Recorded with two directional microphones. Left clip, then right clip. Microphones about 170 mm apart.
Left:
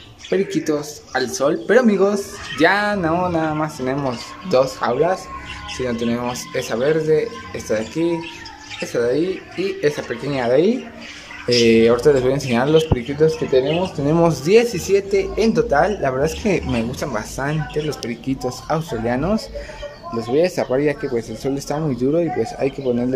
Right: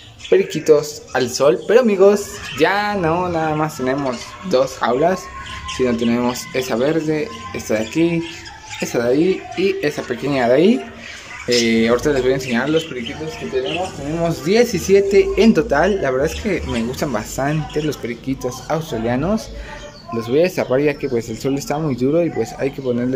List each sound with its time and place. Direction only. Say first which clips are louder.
0.3 s speech: right 6 dB; 5° right (ahead or behind); by 12.8 s 10° left (ahead or behind)
13.2 s speech: left 13 dB; 45° left (ahead or behind)
14.2 s speech: even; 10° left (ahead or behind)
17.0 s speech: right 3 dB; 5° right (ahead or behind)